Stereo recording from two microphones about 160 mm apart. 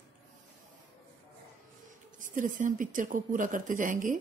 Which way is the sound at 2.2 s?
55° right (ahead or behind).